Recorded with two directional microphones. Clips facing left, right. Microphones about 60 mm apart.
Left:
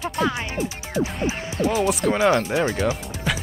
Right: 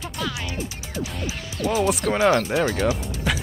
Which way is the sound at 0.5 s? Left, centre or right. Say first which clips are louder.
Left 6 dB; left.